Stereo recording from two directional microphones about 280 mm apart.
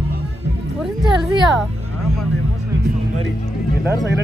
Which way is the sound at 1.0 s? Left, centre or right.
Centre.